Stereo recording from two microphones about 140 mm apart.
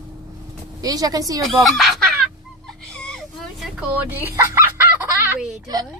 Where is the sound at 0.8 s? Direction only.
25° right (ahead or behind).